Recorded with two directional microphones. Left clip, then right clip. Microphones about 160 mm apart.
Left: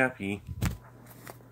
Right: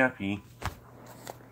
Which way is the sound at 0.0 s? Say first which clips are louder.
Right 1 dB; 25° left (ahead or behind).